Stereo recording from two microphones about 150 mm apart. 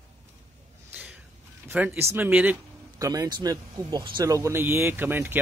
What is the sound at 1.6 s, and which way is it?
Speech, 15° right (ahead or behind).